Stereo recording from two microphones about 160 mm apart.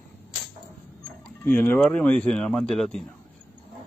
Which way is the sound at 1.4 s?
10° left (ahead or behind).